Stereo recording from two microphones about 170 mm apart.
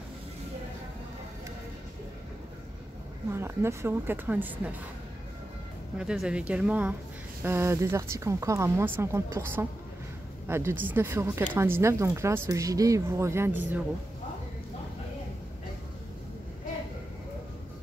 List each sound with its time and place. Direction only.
3.3 s a woman's voice: 15° right (ahead or behind)
5.9 s a woman's voice: 5° right (ahead or behind)